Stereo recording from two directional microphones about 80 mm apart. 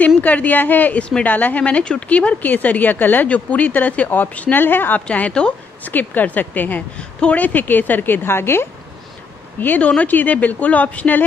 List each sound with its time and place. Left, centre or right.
0.0 s a woman's voice: centre
5.0 s a woman's voice: centre; by 8.6 s left
9.6 s a woman's voice: centre